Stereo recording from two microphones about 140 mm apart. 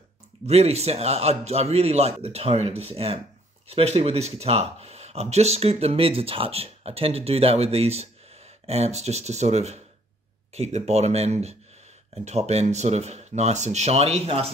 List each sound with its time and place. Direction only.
0.5 s speech: 50° right (ahead or behind)